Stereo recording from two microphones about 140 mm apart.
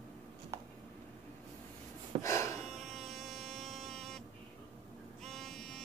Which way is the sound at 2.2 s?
20° left (ahead or behind).